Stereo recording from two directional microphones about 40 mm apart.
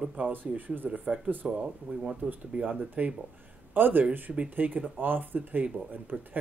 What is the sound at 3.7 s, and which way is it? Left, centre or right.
Speech, right.